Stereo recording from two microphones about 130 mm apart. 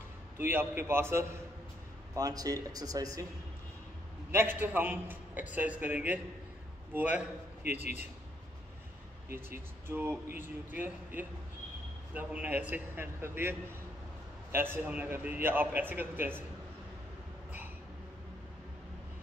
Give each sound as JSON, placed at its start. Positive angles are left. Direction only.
{"t": 0.4, "sound": "a man's voice", "side_deg": -15}
{"t": 4.3, "sound": "a man's voice", "side_deg": -15}
{"t": 9.8, "sound": "a man's voice", "side_deg": -15}
{"t": 12.1, "sound": "a man's voice", "side_deg": -10}